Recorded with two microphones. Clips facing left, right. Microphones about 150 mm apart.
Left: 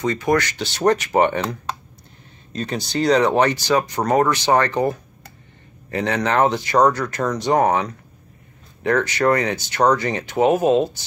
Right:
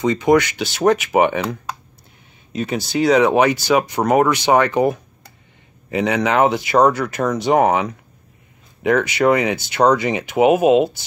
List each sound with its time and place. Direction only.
0.0 s speech: 15° right (ahead or behind)